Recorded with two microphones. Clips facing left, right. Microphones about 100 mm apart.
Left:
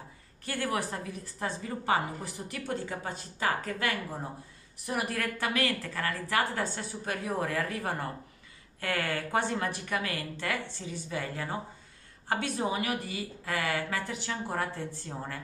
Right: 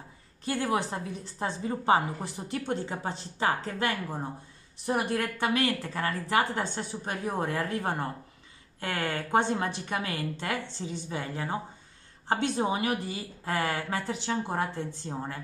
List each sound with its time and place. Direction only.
0.5 s a woman's voice: 20° right (ahead or behind)